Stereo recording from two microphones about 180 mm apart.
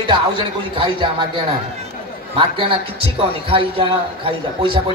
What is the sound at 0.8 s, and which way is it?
Speech, 25° right (ahead or behind).